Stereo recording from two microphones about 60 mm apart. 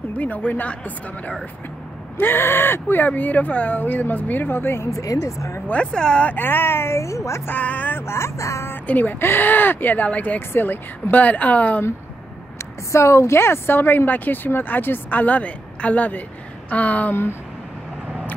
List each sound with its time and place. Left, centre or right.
0.1 s a woman's voice: left
2.1 s a woman's voice: left
3.1 s a woman's voice: left
4.9 s speech: left
5.7 s speech: centre
6.3 s speech: left
7.4 s speech: left
8.1 s speech: left
8.8 s a woman's voice: left
10.5 s a woman's voice: left
12.5 s a woman's voice: left